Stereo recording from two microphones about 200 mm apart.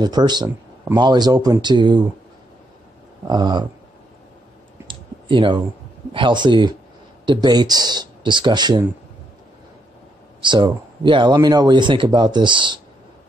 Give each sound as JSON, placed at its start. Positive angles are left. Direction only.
{"t": 0.0, "sound": "speech", "side_deg": -20}
{"t": 3.3, "sound": "speech", "side_deg": -20}
{"t": 4.8, "sound": "clicking", "side_deg": -25}
{"t": 6.1, "sound": "speech", "side_deg": -25}
{"t": 10.4, "sound": "speech", "side_deg": -25}